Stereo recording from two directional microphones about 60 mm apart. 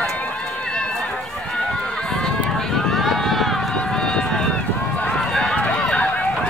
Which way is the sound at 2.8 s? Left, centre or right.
Centre.